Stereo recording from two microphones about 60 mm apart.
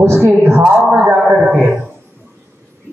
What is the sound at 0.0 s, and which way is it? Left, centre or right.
Speech, right.